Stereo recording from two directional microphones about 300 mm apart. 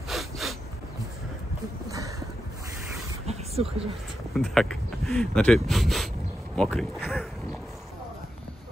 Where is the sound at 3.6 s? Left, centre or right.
Centre.